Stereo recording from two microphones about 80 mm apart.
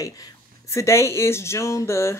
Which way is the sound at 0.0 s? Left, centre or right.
Left.